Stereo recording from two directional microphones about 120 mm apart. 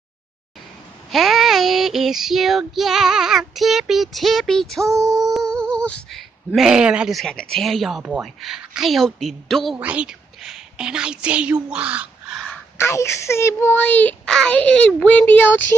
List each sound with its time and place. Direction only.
1.1 s speech: centre (ahead or behind)
4.8 s female singing: 25° right (ahead or behind)
5.1 s speech: centre (ahead or behind)
9.8 s a woman's voice: 10° right (ahead or behind)
12.7 s a child's voice: 20° left (ahead or behind)